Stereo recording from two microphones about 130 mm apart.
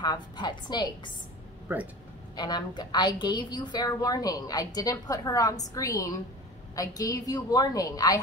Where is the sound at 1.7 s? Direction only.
10° right (ahead or behind).